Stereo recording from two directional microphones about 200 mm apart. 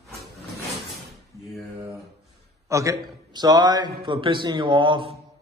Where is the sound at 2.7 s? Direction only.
15° right (ahead or behind).